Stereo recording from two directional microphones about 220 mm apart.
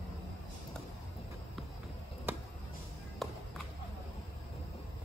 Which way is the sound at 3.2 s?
Centre (ahead or behind).